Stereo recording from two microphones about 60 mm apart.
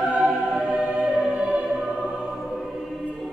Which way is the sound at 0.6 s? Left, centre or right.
Centre.